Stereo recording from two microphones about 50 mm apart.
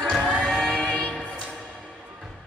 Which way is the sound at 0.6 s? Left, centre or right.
Centre.